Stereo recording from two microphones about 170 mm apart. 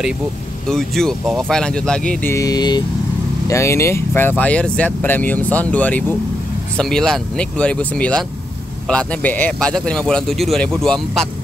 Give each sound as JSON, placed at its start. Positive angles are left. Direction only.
{"t": 0.7, "sound": "a man's voice", "side_deg": 5}
{"t": 2.3, "sound": "a man's voice", "side_deg": 20}